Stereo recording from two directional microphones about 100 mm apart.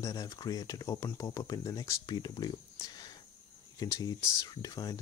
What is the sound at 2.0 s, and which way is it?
Speech, 45° left (ahead or behind).